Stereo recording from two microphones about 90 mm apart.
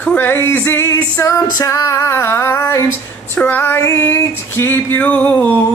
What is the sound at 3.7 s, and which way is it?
Female singing, 35° left (ahead or behind).